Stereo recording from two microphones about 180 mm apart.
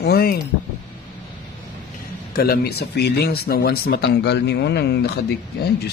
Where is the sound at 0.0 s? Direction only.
60° left (ahead or behind).